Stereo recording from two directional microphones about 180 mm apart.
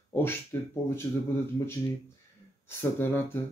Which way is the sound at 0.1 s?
10° left (ahead or behind).